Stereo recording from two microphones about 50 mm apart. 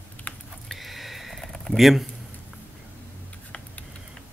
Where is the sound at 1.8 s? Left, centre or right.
Centre.